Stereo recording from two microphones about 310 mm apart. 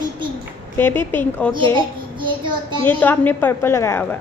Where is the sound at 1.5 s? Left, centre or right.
Centre.